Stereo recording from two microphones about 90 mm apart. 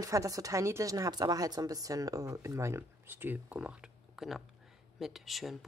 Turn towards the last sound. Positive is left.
turn(degrees=0)  # may be behind; listen again after turning